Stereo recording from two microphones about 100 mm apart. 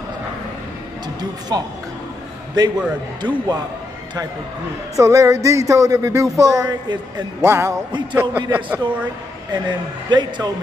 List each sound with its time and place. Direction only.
1.5 s music: 40° right (ahead or behind)
2.6 s a man's voice: 40° right (ahead or behind)
4.9 s music: 30° right (ahead or behind)
7.4 s a man's voice: 30° right (ahead or behind)
9.5 s a man's voice: 50° right (ahead or behind)